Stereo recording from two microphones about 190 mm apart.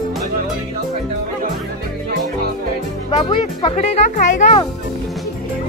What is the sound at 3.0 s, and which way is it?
Speech, 25° left (ahead or behind).